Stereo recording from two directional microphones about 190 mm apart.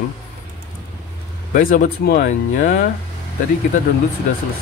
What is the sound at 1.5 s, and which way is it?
Speech, 45° left (ahead or behind).